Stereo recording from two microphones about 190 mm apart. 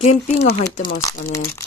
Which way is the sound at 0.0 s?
35° left (ahead or behind).